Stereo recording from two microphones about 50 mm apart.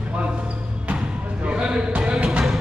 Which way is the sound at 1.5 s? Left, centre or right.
Centre.